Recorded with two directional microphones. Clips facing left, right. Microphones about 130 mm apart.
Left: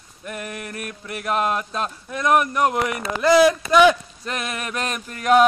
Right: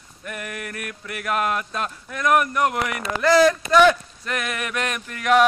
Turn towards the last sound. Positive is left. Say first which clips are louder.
# left 2 dB
turn(degrees=30)  # may be behind; listen again after turning